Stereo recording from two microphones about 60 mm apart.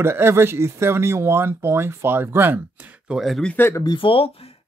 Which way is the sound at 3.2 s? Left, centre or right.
Centre.